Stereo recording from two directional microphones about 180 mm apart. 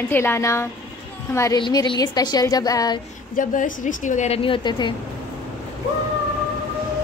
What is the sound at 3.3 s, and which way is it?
A woman's voice, 45° left (ahead or behind).